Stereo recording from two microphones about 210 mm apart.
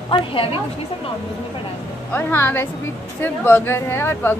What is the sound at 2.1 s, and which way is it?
A woman's voice, 10° left (ahead or behind).